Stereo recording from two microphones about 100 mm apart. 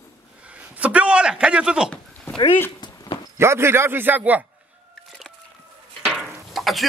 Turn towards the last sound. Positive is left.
turn(degrees=0)  # may be behind; listen again after turning